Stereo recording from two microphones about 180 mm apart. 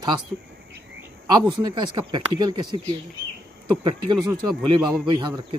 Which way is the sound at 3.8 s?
20° right (ahead or behind).